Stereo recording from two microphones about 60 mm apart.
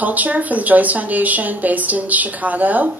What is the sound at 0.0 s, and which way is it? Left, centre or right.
A woman's voice, right.